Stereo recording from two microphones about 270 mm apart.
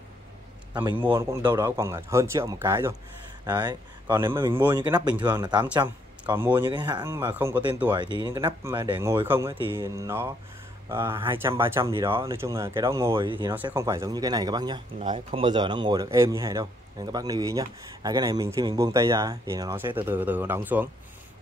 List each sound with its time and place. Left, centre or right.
0.7 s speech: centre
9.5 s speech: centre